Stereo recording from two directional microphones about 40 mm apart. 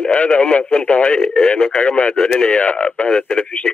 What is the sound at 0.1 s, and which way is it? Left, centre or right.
Speech, left.